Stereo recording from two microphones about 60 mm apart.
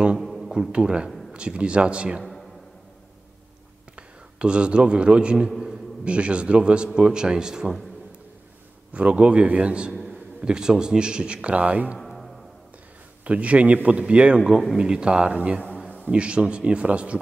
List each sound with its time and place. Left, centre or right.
0.2 s a sound: centre
0.5 s a man's voice: centre
3.9 s a man's voice: centre
8.9 s a man's voice: right
12.0 s music: centre
13.2 s a man's voice: right